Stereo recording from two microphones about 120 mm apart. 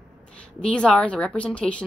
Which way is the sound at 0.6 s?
10° left (ahead or behind).